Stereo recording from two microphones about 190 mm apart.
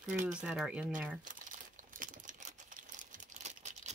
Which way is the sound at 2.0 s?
45° right (ahead or behind).